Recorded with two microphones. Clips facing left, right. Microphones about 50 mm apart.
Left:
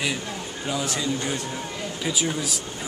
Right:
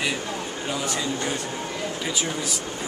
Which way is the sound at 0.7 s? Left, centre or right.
Centre.